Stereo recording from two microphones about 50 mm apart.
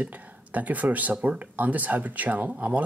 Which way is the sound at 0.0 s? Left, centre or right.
Right.